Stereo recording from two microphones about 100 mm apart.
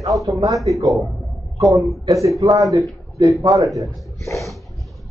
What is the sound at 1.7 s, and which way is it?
A man's voice, 35° right (ahead or behind).